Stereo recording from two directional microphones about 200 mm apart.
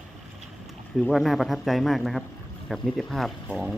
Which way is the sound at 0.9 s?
Centre (ahead or behind).